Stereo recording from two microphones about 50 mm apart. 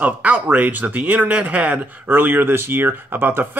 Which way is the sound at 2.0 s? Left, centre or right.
Right.